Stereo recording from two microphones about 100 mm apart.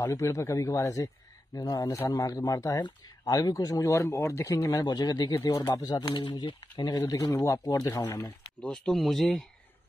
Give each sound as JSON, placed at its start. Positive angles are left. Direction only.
{"t": 0.0, "sound": "speech", "side_deg": 30}
{"t": 8.6, "sound": "speech", "side_deg": 5}